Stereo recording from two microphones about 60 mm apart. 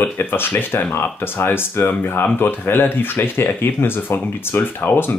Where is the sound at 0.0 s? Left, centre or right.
Left.